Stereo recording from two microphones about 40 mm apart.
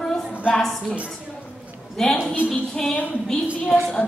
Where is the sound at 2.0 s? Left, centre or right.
Centre.